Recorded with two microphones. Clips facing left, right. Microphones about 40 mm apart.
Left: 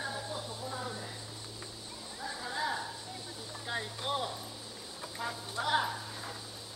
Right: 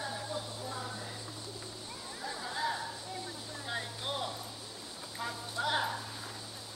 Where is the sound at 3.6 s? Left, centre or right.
Centre.